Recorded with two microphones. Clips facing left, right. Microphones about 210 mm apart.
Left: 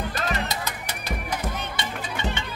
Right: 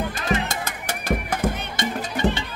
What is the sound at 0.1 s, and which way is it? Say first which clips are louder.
Music: right 3 dB; 50° right (ahead or behind).